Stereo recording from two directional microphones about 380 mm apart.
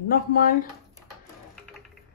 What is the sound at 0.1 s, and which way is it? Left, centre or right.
Speech, left.